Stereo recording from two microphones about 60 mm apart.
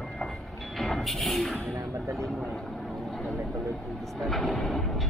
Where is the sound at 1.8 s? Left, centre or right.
Right.